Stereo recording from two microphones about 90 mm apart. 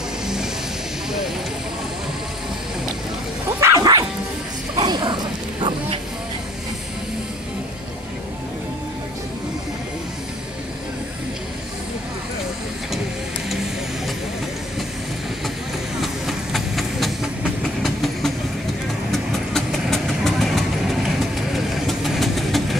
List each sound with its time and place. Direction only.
3.6 s music: 45° right (ahead or behind)
4.7 s bow-wow: 55° right (ahead or behind)
16.0 s train: centre (ahead or behind)
19.1 s vehicle: centre (ahead or behind)